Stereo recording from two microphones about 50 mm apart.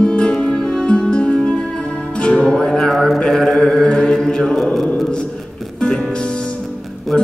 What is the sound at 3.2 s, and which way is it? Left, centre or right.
Mantra, centre.